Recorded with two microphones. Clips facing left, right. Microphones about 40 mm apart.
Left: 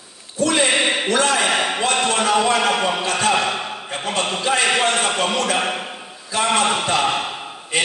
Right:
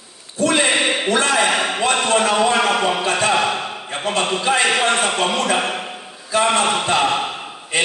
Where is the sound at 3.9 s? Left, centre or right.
Right.